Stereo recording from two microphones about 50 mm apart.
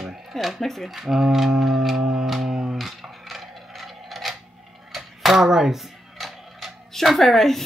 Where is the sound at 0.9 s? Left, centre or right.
Centre.